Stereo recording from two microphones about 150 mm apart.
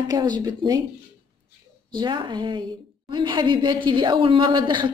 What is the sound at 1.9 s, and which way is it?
Speech, 30° right (ahead or behind).